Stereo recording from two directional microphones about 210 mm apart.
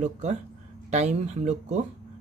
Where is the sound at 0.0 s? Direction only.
35° right (ahead or behind).